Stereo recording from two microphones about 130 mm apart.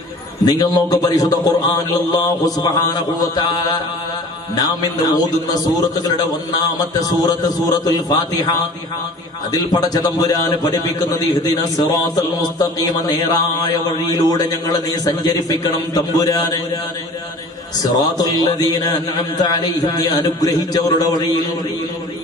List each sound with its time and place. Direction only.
0.5 s a man's voice: 30° left (ahead or behind)
6.6 s a man's voice: 30° left (ahead or behind)
18.1 s a man's voice: 30° left (ahead or behind)